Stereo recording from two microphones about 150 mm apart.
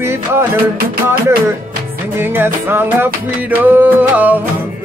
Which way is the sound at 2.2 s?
15° right (ahead or behind).